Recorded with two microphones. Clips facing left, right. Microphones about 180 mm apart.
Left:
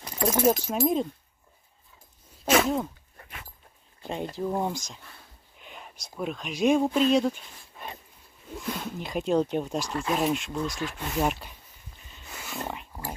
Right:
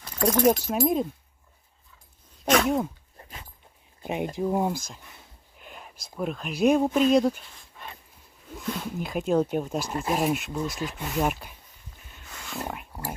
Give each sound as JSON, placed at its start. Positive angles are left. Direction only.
{"t": 0.2, "sound": "speech", "side_deg": 5}
{"t": 2.4, "sound": "sneeze", "side_deg": 5}
{"t": 3.2, "sound": "a sound", "side_deg": -25}
{"t": 4.0, "sound": "speech", "side_deg": -15}
{"t": 8.8, "sound": "speech", "side_deg": -5}
{"t": 12.3, "sound": "a sound", "side_deg": 5}